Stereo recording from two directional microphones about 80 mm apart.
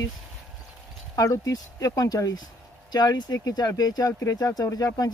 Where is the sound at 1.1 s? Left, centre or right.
Left.